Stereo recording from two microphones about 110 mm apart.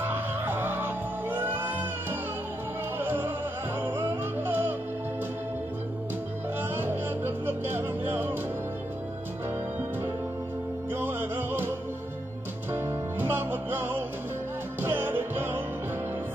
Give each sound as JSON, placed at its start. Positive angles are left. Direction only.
{"t": 0.0, "sound": "music", "side_deg": -20}
{"t": 6.7, "sound": "music", "side_deg": -20}
{"t": 11.0, "sound": "music", "side_deg": -20}
{"t": 12.7, "sound": "music", "side_deg": -20}